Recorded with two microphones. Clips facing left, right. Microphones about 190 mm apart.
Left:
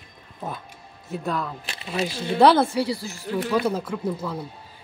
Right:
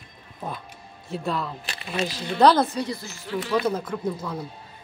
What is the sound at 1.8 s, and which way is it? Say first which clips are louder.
Speech: left 1 dB; 25° left (ahead or behind).